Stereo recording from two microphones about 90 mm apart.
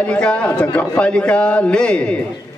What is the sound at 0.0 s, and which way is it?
A man's voice, 10° left (ahead or behind).